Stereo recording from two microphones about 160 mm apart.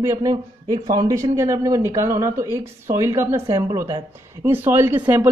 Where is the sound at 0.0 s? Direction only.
20° right (ahead or behind).